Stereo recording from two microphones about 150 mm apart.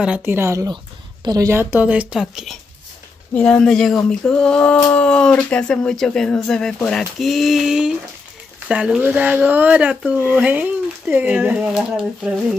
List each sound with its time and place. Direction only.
0.0 s speech: 10° right (ahead or behind)
4.1 s a sound: 5° left (ahead or behind)
4.8 s speech: 10° left (ahead or behind)